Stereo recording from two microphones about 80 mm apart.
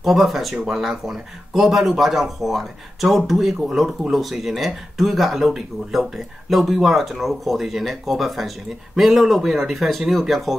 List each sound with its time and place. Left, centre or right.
0.0 s speech: centre